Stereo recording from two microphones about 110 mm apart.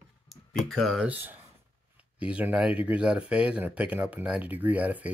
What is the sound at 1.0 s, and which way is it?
Speech, 15° right (ahead or behind).